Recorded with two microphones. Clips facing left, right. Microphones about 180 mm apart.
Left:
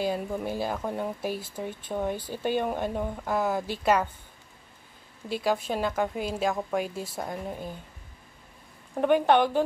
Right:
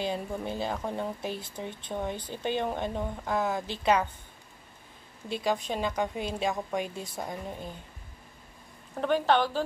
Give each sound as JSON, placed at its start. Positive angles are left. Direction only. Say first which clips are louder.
{"t": 0.0, "sound": "speech", "louder": "left 3 dB", "side_deg": 5}
{"t": 5.3, "sound": "a woman's voice", "louder": "left 2 dB", "side_deg": 5}
{"t": 8.9, "sound": "speech", "louder": "left 4 dB", "side_deg": 15}